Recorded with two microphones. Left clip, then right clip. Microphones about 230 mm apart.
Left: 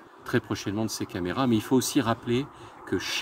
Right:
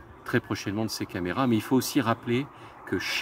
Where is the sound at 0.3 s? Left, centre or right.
Centre.